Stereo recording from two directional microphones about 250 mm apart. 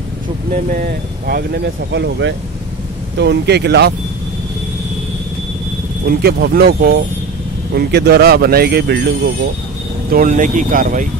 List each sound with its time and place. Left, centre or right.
0.5 s speech: right
6.0 s speech: right
10.1 s speech: right